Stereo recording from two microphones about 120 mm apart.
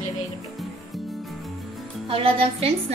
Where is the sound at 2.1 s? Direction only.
50° right (ahead or behind).